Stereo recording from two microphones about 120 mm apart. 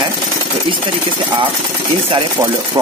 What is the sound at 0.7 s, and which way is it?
Speech, 45° right (ahead or behind).